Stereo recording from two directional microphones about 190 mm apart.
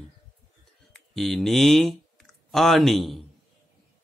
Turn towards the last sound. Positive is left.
turn(degrees=0)  # may be behind; listen again after turning